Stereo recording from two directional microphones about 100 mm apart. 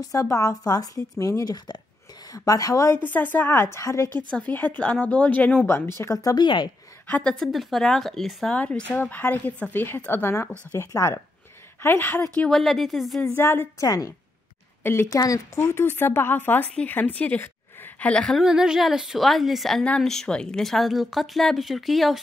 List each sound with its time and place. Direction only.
0.0 s a woman's voice: 35° left (ahead or behind)
3.0 s speech: 20° left (ahead or behind)
4.6 s speech: 15° left (ahead or behind)
5.7 s a woman's voice: 25° left (ahead or behind); by 6.7 s 45° left (ahead or behind)
7.1 s speech: 15° left (ahead or behind)
7.3 s a woman's voice: centre (ahead or behind)
8.5 s speech: 10° left (ahead or behind)
12.4 s a woman's voice: 5° left (ahead or behind)
13.4 s speech: 25° left (ahead or behind)
13.8 s a woman's voice: 35° left (ahead or behind)
14.8 s speech: 25° left (ahead or behind); by 18.4 s 5° left (ahead or behind)
18.4 s a woman's voice: 5° right (ahead or behind)